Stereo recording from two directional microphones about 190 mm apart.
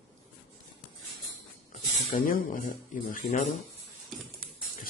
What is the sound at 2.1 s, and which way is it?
Speech, 45° left (ahead or behind).